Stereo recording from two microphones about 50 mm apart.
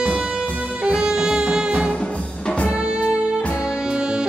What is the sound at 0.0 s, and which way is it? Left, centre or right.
Music, centre.